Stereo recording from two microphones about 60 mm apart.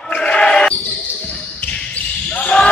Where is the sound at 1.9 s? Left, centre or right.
Centre.